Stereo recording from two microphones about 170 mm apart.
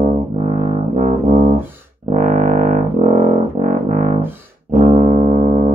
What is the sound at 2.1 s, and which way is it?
Music, 50° right (ahead or behind).